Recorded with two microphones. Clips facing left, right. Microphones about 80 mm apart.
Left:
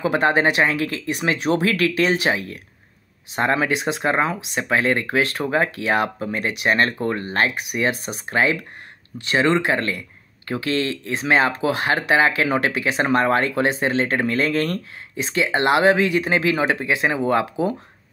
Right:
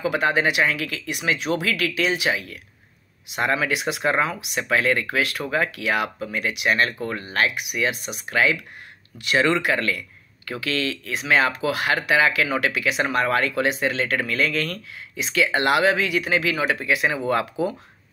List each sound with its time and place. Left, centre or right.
0.0 s speech: left